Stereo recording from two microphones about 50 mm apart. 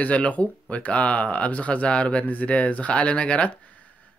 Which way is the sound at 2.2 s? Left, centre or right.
Left.